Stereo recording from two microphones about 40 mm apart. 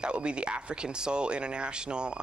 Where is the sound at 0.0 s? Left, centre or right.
Right.